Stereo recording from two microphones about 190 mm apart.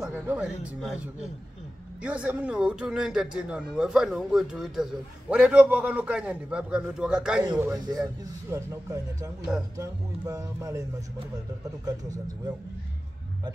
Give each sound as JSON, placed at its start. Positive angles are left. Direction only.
{"t": 0.0, "sound": "speech", "side_deg": -5}
{"t": 2.0, "sound": "a man's voice", "side_deg": -5}
{"t": 7.5, "sound": "a man's voice", "side_deg": -15}